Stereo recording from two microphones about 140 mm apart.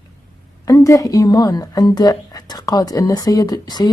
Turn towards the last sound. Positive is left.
turn(degrees=30)  # may be behind; listen again after turning